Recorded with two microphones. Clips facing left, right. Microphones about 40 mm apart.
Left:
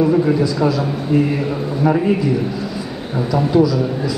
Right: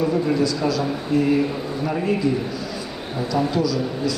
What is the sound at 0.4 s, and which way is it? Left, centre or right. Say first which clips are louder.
A man's voice: left 4 dB; left.